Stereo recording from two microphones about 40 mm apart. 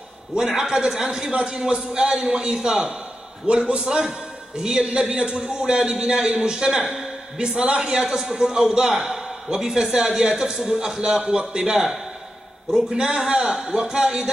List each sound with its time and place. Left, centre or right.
0.5 s a man's voice: centre
3.4 s a man's voice: right
3.8 s a man's voice: centre